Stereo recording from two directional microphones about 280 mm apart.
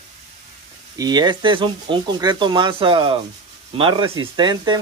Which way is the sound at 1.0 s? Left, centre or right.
Centre.